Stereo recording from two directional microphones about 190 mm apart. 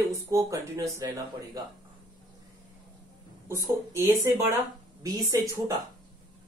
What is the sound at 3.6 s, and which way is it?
Speech, 15° right (ahead or behind).